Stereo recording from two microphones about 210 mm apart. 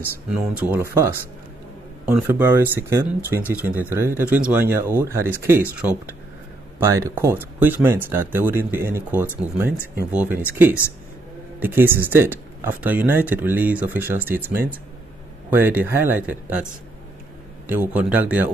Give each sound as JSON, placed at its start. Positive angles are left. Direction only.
{"t": 0.3, "sound": "speech", "side_deg": -5}
{"t": 2.0, "sound": "speech", "side_deg": -5}
{"t": 15.5, "sound": "speech", "side_deg": -10}
{"t": 17.7, "sound": "speech", "side_deg": -5}